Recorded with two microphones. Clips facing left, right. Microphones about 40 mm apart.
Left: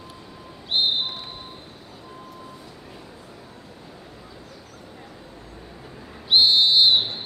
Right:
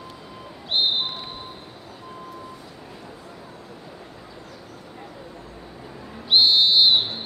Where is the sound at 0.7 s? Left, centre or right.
Centre.